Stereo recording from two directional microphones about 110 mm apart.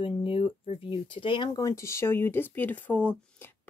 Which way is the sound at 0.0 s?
60° left (ahead or behind).